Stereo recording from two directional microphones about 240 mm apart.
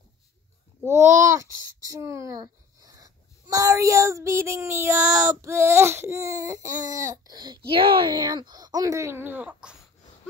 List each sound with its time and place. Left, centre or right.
0.8 s a child's voice: centre